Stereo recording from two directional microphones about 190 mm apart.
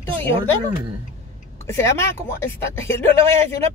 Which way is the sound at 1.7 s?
15° left (ahead or behind).